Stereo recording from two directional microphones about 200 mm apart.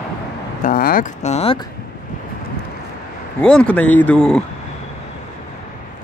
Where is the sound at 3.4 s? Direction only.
5° left (ahead or behind).